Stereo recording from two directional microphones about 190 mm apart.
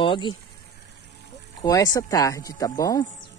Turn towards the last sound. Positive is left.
turn(degrees=20)  # may be behind; listen again after turning